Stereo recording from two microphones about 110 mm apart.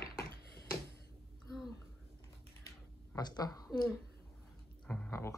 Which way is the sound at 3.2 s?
40° left (ahead or behind).